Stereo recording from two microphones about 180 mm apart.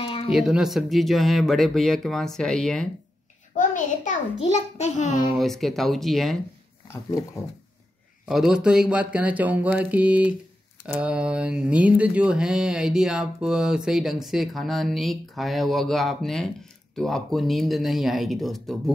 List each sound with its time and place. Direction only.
0.0 s a sound: 30° left (ahead or behind)
0.3 s speech: centre (ahead or behind)
3.5 s a sound: 45° left (ahead or behind)
4.4 s a child's voice: 40° left (ahead or behind)
5.4 s speech: centre (ahead or behind)
8.3 s speech: 5° right (ahead or behind)